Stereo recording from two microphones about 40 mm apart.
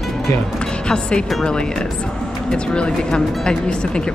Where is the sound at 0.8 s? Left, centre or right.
Left.